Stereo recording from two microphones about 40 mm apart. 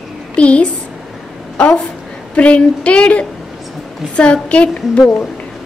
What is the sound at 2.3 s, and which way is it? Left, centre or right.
Speech, left.